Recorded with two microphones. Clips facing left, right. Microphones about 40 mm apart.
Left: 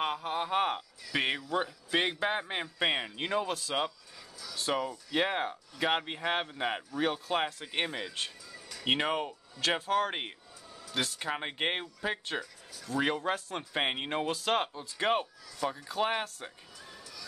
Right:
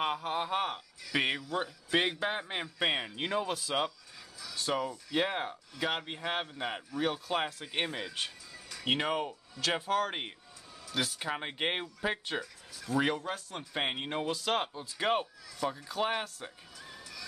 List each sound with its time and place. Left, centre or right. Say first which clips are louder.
0.0 s speech: even; centre
0.6 s a sound: left 4 dB; left
1.0 s speech: right 1 dB; centre
7.1 s speech: left 1 dB; centre
13.2 s speech: left 5 dB; left
13.7 s speech: left 2 dB; centre
16.9 s a sound: right 2 dB; centre